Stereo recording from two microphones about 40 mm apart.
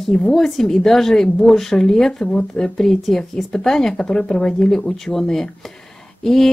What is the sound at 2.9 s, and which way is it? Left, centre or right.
Speech, centre.